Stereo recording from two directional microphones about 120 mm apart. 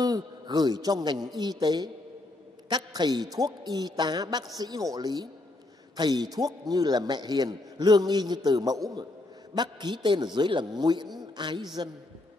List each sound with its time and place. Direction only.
0.0 s a man's voice: 35° right (ahead or behind)